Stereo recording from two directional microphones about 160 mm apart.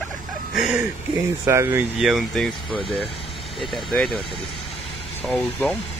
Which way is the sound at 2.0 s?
Centre (ahead or behind).